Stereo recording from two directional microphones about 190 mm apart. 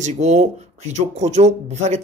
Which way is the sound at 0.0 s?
35° right (ahead or behind).